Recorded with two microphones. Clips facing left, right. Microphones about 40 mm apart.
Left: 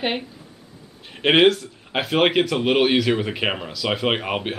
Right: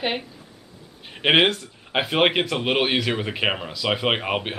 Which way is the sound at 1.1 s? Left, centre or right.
Centre.